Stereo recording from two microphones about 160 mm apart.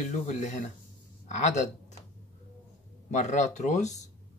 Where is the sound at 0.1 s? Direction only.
45° left (ahead or behind).